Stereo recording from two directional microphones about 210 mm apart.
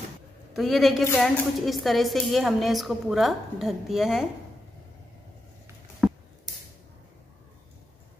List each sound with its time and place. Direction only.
0.6 s a woman's voice: centre (ahead or behind)